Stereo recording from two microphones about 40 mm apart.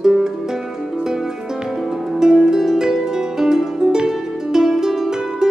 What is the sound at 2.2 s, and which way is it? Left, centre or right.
Music, centre.